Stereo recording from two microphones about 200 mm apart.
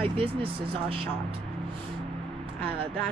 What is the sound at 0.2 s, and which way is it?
Speech, 30° right (ahead or behind).